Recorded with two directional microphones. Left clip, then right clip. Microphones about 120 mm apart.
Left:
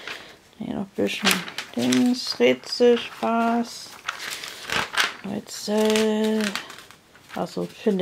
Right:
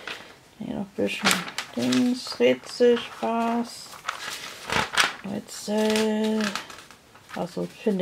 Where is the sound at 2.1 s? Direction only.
40° left (ahead or behind).